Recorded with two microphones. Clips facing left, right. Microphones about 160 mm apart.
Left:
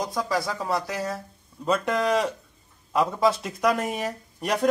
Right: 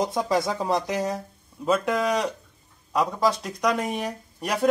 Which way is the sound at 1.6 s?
Centre (ahead or behind).